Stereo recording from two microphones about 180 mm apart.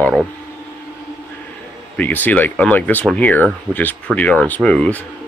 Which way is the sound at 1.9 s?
10° left (ahead or behind).